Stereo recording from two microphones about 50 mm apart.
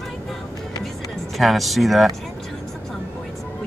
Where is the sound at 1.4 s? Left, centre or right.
Centre.